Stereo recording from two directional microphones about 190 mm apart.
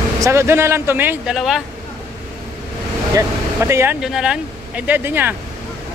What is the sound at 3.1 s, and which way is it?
Speech, 15° right (ahead or behind).